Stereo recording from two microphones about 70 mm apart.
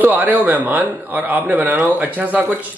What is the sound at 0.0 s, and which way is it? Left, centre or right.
A man's voice, right.